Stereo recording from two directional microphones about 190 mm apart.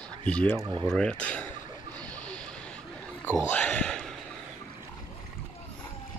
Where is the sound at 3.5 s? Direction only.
5° left (ahead or behind).